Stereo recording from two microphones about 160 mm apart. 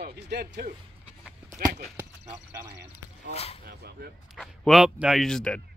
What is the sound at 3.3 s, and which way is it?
Speech, 40° left (ahead or behind).